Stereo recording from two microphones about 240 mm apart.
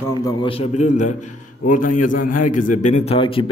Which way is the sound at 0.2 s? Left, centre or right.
Left.